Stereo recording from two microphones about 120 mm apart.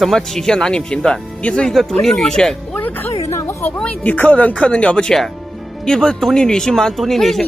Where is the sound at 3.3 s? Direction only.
25° left (ahead or behind).